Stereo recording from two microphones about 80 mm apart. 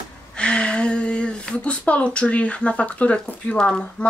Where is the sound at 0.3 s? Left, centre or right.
Centre.